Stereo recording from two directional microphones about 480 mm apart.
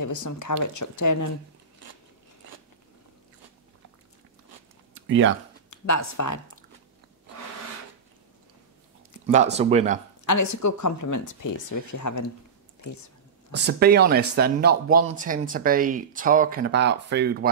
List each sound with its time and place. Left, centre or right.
0.0 s speech: left
5.0 s speech: right
5.7 s speech: left
9.2 s speech: centre
10.2 s speech: left
13.5 s speech: right